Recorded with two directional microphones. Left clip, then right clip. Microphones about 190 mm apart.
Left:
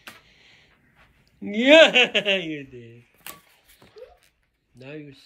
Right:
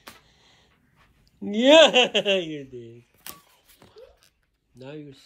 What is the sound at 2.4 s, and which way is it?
Speech, 50° right (ahead or behind).